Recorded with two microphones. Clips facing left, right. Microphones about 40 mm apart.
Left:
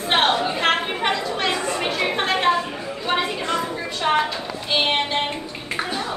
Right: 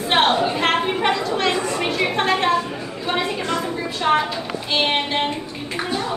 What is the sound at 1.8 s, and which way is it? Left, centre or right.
Chatter, centre.